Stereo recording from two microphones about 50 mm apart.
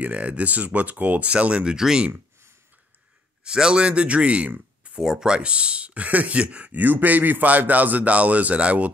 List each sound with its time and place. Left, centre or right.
0.0 s speech: right
3.4 s speech: centre
5.0 s speech: centre
5.3 s speech: right